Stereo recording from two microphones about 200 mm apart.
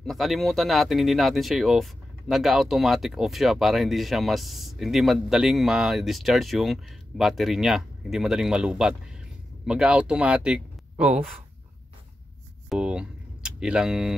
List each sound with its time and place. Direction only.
0.0 s speech: centre (ahead or behind)
12.6 s speech: 5° right (ahead or behind)